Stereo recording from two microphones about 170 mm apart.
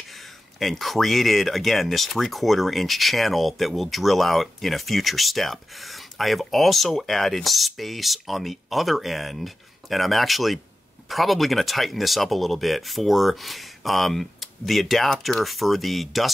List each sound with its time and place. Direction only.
0.6 s speech: centre (ahead or behind)